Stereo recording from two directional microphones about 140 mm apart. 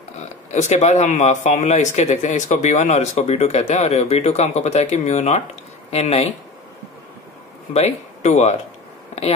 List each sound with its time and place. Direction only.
0.5 s speech: 55° left (ahead or behind)
7.7 s speech: 50° left (ahead or behind)